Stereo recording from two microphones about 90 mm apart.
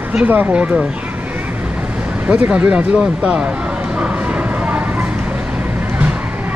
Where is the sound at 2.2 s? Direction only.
15° right (ahead or behind).